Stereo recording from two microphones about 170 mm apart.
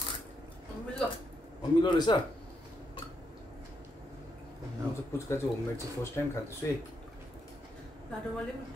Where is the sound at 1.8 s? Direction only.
25° left (ahead or behind).